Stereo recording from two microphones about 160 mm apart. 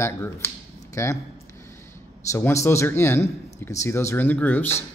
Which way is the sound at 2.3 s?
15° left (ahead or behind).